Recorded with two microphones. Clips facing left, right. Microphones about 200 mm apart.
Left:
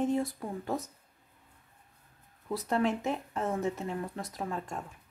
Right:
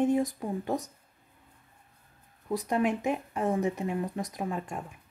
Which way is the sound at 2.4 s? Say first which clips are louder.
Right 2 dB; 15° right (ahead or behind).